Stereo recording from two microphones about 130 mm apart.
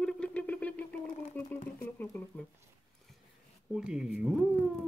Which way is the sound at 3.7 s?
5° right (ahead or behind).